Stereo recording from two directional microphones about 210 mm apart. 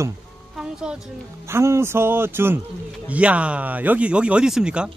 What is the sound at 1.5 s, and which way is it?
A man's voice, 10° right (ahead or behind).